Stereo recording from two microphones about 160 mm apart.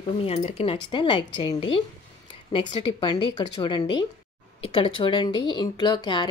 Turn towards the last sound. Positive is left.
turn(degrees=30)  # may be behind; listen again after turning